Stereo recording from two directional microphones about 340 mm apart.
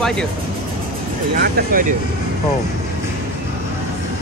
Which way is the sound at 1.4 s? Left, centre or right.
Right.